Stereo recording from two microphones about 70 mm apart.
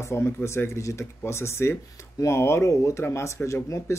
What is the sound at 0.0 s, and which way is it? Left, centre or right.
Speech, left.